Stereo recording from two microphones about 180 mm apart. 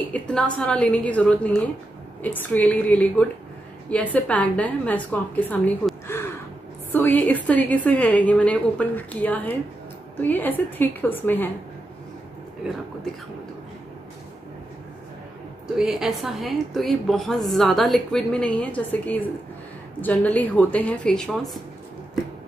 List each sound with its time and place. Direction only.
0.1 s a woman's voice: 5° left (ahead or behind)
15.8 s a woman's voice: centre (ahead or behind)